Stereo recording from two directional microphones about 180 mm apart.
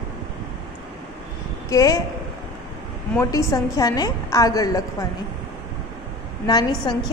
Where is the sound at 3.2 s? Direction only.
15° left (ahead or behind).